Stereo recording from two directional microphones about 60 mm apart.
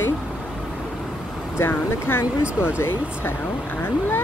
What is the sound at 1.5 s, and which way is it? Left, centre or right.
Speech, left.